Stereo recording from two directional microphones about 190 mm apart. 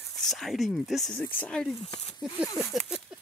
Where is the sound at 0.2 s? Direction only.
Centre (ahead or behind).